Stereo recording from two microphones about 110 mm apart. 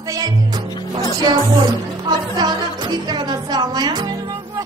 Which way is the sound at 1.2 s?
40° right (ahead or behind).